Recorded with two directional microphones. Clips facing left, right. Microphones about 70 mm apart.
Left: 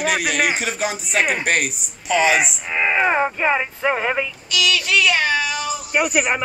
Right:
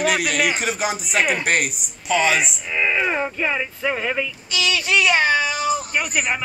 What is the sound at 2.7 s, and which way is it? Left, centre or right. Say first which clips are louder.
Speech: left 3 dB; left.